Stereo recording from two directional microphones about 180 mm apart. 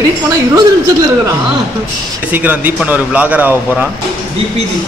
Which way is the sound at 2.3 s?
10° right (ahead or behind).